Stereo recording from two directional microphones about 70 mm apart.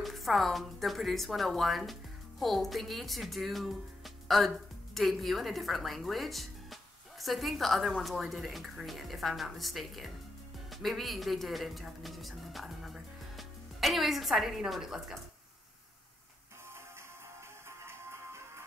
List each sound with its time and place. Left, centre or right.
0.0 s a woman's voice: centre
17.6 s music: right